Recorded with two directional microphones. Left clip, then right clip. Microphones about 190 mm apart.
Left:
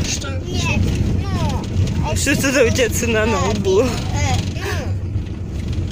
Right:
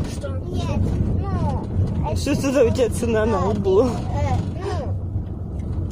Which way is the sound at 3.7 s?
Centre (ahead or behind).